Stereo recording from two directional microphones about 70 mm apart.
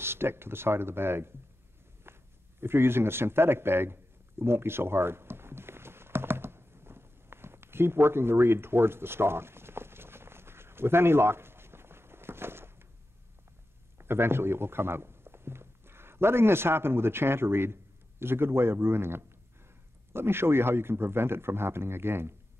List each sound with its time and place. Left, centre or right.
0.0 s a man's voice: right
2.1 s a sound: right
13.9 s a man's voice: right